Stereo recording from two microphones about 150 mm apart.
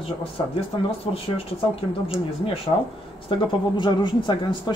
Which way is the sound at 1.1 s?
40° left (ahead or behind).